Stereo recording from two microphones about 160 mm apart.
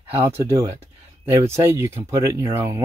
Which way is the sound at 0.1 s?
15° right (ahead or behind).